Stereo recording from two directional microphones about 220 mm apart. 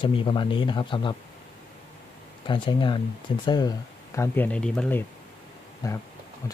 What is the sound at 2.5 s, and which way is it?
Speech, 20° left (ahead or behind).